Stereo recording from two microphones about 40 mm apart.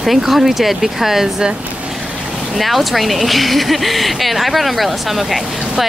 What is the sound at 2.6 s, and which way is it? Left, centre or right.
Speech, centre.